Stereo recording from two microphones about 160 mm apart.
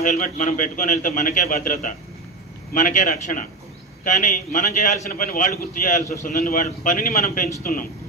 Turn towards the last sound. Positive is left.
turn(degrees=60)  # may be behind; listen again after turning